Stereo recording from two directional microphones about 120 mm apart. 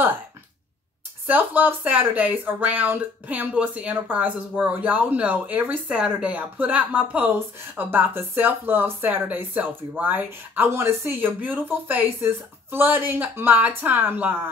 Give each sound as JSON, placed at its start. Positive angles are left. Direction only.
{"t": 1.2, "sound": "speech", "side_deg": -15}